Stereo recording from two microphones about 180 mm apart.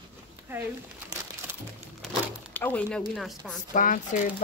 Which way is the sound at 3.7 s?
45° left (ahead or behind).